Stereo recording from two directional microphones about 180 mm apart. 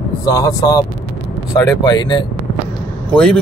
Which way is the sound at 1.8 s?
25° left (ahead or behind).